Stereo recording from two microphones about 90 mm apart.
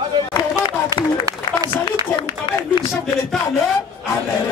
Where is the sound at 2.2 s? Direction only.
60° left (ahead or behind).